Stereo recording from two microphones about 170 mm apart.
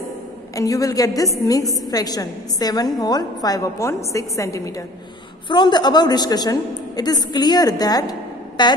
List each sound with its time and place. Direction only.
0.6 s a woman's voice: 20° left (ahead or behind)